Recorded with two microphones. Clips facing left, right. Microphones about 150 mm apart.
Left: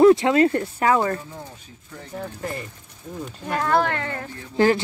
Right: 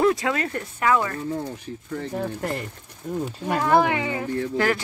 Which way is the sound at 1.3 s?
75° right (ahead or behind).